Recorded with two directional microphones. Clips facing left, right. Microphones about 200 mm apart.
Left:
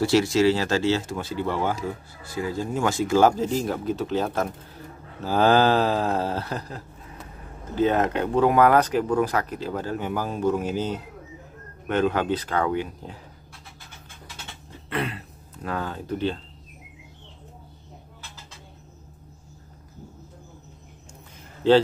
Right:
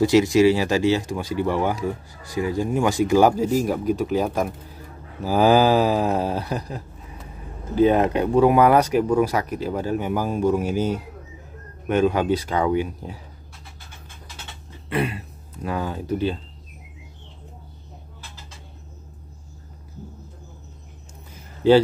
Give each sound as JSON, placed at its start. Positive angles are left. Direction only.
{"t": 0.0, "sound": "speech", "side_deg": -15}
{"t": 14.9, "sound": "speech", "side_deg": -10}